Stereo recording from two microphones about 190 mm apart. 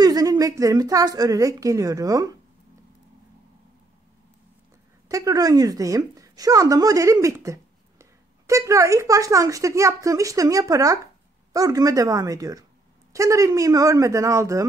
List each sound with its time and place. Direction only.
0.0 s a woman's voice: 20° right (ahead or behind)
5.1 s a woman's voice: 20° right (ahead or behind)